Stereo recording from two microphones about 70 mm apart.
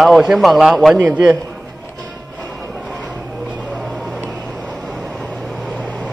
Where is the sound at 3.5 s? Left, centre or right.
Centre.